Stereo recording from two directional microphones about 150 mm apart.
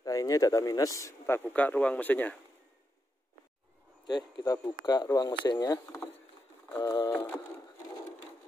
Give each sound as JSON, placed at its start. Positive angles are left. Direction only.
{"t": 0.0, "sound": "speech", "side_deg": 25}
{"t": 4.1, "sound": "speech", "side_deg": 25}